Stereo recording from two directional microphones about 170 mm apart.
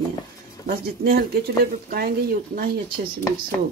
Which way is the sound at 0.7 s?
65° right (ahead or behind).